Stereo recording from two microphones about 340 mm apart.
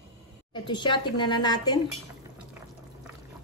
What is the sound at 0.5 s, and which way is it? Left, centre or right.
A woman's voice, centre.